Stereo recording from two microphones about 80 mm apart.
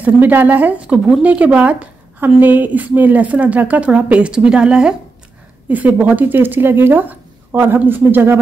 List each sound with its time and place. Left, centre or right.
0.0 s a woman's voice: right